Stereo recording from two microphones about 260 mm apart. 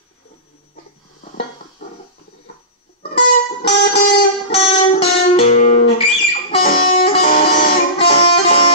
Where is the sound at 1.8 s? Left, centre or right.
Left.